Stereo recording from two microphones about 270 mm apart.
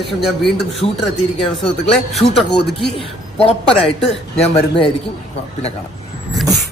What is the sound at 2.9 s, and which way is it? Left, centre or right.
Speech, left.